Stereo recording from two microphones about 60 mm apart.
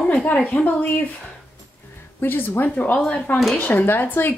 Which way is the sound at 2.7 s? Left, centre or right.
Left.